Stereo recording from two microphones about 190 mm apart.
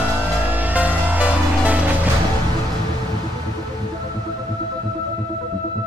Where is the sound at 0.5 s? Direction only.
10° right (ahead or behind).